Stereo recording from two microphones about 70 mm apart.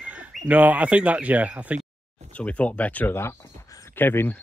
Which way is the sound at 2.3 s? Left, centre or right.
Centre.